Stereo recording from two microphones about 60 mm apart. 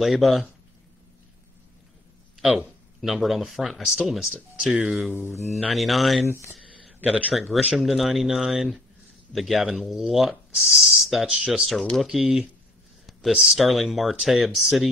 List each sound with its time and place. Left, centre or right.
0.0 s speech: centre
2.4 s speech: centre
6.2 s speech: left
7.1 s a man's voice: right
7.3 s speech: centre
11.2 s speech: centre